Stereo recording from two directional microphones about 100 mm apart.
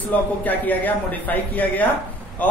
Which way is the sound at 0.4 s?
15° left (ahead or behind).